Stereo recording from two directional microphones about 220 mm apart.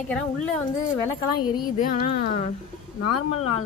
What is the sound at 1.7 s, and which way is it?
Speech, 35° left (ahead or behind).